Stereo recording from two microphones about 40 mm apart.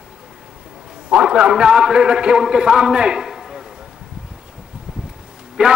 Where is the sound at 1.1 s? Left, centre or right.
Right.